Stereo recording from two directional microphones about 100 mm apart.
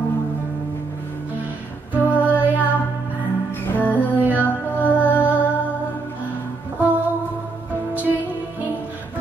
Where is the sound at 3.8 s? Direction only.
15° right (ahead or behind).